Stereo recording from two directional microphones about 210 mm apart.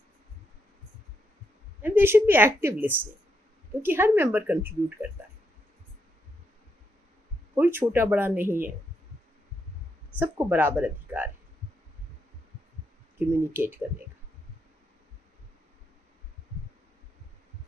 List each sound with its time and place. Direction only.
1.8 s a woman's voice: 10° right (ahead or behind)
7.5 s a woman's voice: 10° right (ahead or behind)
10.1 s a woman's voice: 10° right (ahead or behind)
13.2 s a woman's voice: 10° right (ahead or behind)